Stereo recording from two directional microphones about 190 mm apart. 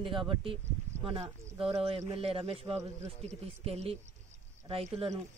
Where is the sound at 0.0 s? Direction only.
25° right (ahead or behind).